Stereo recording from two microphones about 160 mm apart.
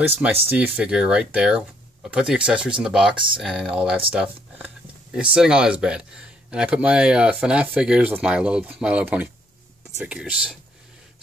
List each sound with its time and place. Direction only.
0.5 s speech: 5° right (ahead or behind)